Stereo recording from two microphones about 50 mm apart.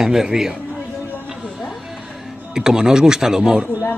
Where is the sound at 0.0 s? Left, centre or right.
Centre.